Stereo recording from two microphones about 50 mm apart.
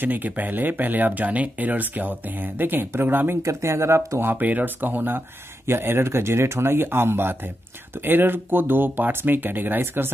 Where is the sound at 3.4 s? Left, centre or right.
Right.